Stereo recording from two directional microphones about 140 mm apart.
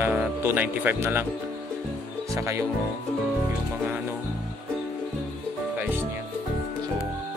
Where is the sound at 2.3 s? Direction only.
20° right (ahead or behind).